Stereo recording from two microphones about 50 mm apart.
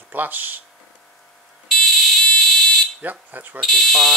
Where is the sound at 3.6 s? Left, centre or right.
Centre.